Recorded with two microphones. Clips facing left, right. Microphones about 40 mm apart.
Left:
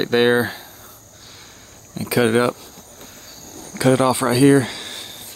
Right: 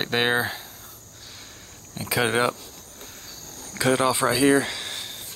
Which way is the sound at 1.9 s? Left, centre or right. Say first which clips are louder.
Left 6 dB; centre.